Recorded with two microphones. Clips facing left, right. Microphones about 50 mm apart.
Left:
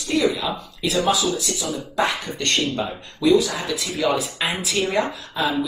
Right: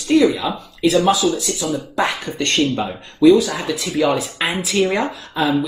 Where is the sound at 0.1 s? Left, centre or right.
Right.